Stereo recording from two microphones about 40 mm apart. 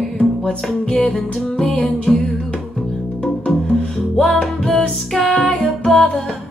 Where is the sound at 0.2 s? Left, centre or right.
Centre.